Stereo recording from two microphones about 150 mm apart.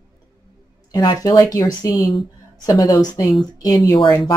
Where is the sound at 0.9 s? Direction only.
25° left (ahead or behind).